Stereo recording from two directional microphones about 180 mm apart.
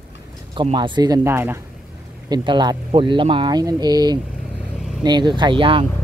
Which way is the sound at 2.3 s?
25° right (ahead or behind).